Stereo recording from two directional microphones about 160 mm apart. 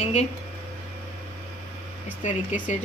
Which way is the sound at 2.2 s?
50° left (ahead or behind).